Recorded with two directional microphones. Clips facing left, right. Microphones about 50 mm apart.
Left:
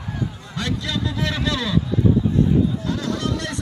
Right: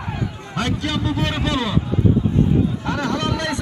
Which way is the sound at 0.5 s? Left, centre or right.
Right.